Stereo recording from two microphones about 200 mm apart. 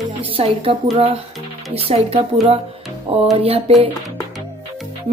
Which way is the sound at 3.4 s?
30° right (ahead or behind).